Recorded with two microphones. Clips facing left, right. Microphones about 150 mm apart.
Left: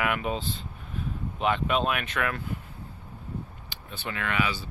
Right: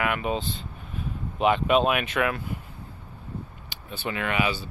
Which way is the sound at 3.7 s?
5° right (ahead or behind).